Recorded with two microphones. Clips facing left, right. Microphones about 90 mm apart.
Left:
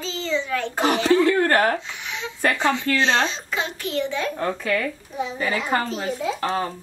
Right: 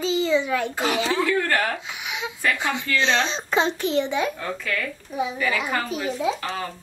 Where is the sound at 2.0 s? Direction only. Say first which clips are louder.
Right 1 dB; 10° right (ahead or behind).